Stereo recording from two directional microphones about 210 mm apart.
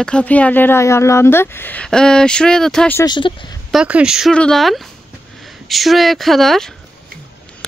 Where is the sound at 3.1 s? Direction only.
20° left (ahead or behind).